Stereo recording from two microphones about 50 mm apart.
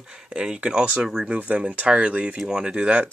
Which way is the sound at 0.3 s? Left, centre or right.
Centre.